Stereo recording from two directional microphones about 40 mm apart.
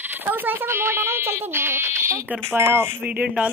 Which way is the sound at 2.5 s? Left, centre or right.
Right.